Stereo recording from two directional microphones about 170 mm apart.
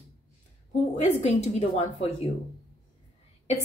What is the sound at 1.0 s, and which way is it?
Speech, 40° left (ahead or behind).